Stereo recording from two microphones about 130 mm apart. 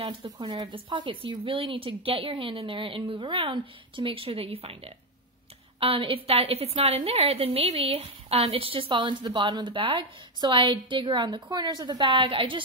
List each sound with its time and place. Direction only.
0.2 s a woman's voice: 35° right (ahead or behind)